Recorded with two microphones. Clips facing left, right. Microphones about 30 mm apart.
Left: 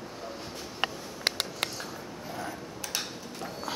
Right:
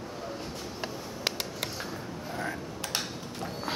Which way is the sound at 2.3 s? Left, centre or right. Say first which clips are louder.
Right 3 dB; right.